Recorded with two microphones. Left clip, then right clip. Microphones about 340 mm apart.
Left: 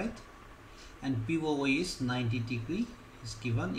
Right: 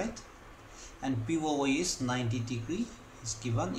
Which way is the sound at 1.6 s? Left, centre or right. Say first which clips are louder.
Right 1 dB; centre.